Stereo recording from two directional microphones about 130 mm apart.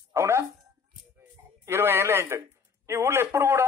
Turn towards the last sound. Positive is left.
turn(degrees=-20)  # may be behind; listen again after turning